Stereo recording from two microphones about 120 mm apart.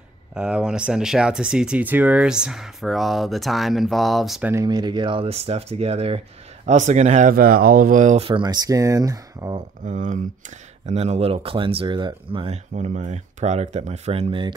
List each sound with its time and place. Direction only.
0.3 s speech: 5° right (ahead or behind)
4.4 s speech: 15° right (ahead or behind)
4.6 s speech: 35° right (ahead or behind); by 7.3 s 80° right
7.9 s speech: 90° right
8.2 s speech: 40° right (ahead or behind)
9.8 s speech: 90° right
10.9 s speech: 65° right (ahead or behind); by 12.4 s 45° right (ahead or behind)
12.4 s speech: 75° right (ahead or behind); by 14.4 s 60° right (ahead or behind)